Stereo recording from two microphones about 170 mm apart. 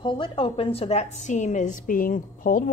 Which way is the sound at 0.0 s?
30° left (ahead or behind).